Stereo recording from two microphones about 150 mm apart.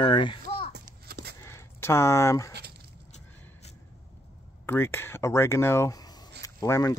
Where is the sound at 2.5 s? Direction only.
90° right.